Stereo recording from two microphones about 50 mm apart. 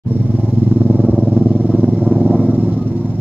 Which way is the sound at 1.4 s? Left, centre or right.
Right.